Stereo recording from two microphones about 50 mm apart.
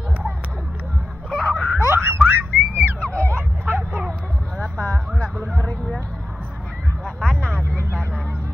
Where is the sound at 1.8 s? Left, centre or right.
Right.